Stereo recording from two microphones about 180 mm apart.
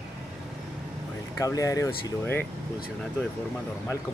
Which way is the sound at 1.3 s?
20° left (ahead or behind).